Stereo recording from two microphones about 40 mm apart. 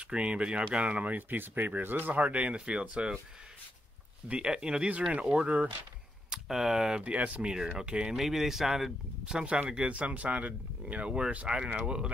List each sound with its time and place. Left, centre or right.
0.1 s speech: right
1.3 s speech: right
2.2 s speech: right
4.3 s speech: right
7.0 s speech: right
8.2 s speech: centre
9.2 s speech: right